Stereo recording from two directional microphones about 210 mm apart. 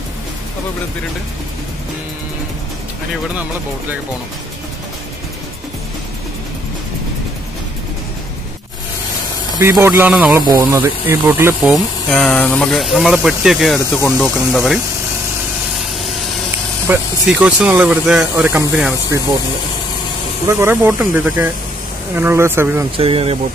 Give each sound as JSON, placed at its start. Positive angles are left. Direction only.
{"t": 9.6, "sound": "speech", "side_deg": -10}
{"t": 12.1, "sound": "speech", "side_deg": 5}
{"t": 16.8, "sound": "speech", "side_deg": -10}
{"t": 20.4, "sound": "speech", "side_deg": -10}
{"t": 22.9, "sound": "speech", "side_deg": -25}